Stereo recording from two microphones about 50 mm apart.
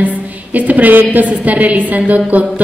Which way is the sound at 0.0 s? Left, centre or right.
Right.